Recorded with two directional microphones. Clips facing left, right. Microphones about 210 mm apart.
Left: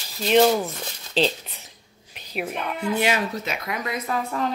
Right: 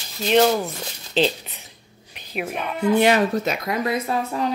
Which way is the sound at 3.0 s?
45° right (ahead or behind).